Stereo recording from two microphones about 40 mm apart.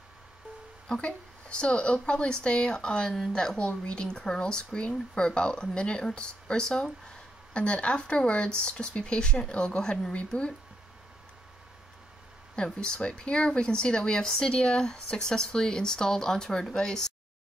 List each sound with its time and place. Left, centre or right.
1.0 s speech: left
12.5 s speech: centre